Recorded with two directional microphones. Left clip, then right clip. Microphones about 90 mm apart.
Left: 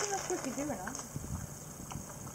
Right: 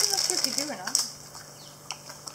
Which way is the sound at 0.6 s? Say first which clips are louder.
Right 6 dB; 40° right (ahead or behind).